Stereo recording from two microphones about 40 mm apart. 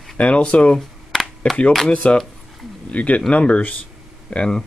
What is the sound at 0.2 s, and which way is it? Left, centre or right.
Speech, left.